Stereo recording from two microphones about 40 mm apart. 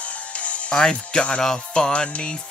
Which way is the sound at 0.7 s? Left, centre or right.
Left.